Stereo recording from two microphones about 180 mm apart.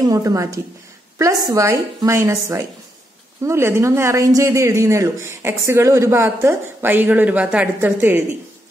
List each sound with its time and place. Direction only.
0.0 s speech: 20° right (ahead or behind)